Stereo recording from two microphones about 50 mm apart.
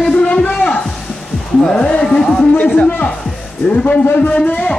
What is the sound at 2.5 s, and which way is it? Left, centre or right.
Speech, left.